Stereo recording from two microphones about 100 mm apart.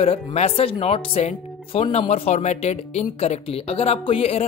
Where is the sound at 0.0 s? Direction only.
85° left.